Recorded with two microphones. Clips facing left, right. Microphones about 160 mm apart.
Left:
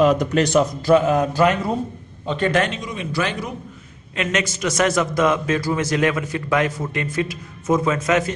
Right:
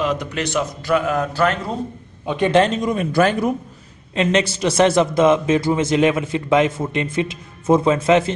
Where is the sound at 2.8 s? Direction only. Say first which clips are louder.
Right 8 dB; 50° right (ahead or behind).